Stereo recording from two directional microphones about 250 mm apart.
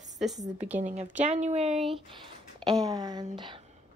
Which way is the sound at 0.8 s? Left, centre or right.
Right.